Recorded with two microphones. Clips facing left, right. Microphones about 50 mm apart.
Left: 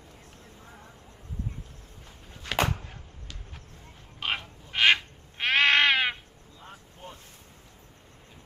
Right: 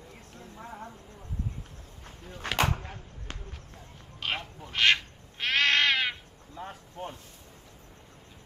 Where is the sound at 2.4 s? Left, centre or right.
Right.